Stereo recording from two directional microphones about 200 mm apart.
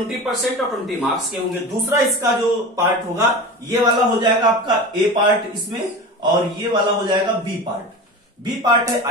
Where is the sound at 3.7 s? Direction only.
20° right (ahead or behind).